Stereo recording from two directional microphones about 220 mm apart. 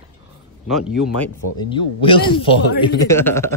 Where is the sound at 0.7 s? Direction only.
Centre (ahead or behind).